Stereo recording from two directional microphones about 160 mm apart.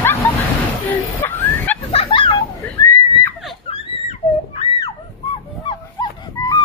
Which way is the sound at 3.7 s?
40° left (ahead or behind).